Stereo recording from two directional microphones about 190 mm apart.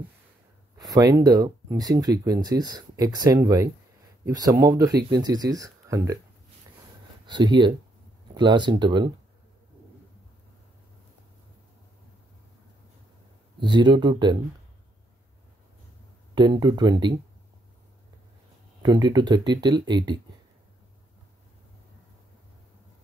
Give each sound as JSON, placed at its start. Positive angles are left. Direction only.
{"t": 0.7, "sound": "speech", "side_deg": -20}
{"t": 7.2, "sound": "speech", "side_deg": -25}
{"t": 13.6, "sound": "speech", "side_deg": -25}
{"t": 16.3, "sound": "speech", "side_deg": -20}
{"t": 18.8, "sound": "speech", "side_deg": -20}